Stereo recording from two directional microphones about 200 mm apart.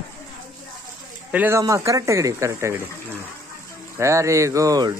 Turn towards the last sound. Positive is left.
turn(degrees=-20)  # may be behind; listen again after turning